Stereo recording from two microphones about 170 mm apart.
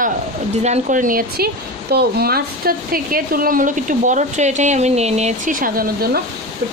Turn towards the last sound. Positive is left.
turn(degrees=-60)  # may be behind; listen again after turning